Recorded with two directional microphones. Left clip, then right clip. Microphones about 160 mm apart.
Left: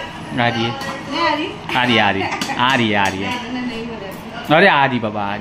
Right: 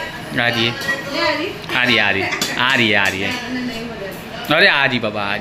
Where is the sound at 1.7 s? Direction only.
20° left (ahead or behind).